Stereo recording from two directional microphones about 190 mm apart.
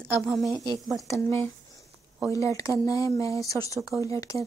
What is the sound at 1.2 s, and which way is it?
Speech, 10° left (ahead or behind).